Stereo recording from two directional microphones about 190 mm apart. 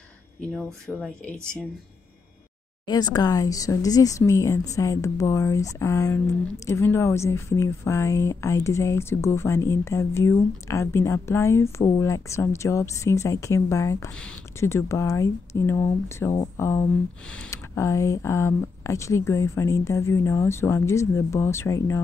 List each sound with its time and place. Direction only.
0.6 s speech: 5° left (ahead or behind)
2.9 s speech: 20° left (ahead or behind)